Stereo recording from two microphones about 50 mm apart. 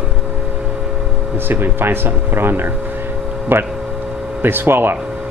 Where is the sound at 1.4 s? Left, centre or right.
Right.